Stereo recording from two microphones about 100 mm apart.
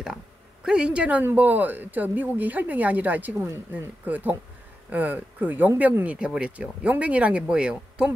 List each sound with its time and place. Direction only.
0.7 s speech: 10° right (ahead or behind)